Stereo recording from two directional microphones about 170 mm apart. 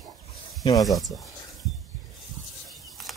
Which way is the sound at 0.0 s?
Centre (ahead or behind).